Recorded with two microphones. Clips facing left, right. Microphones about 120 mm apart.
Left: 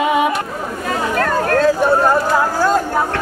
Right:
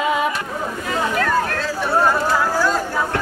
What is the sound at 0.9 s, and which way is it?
Chatter, 45° left (ahead or behind).